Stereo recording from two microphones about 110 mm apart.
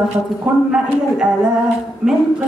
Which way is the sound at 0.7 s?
10° right (ahead or behind).